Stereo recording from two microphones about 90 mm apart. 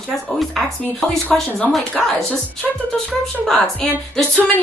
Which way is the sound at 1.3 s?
15° left (ahead or behind).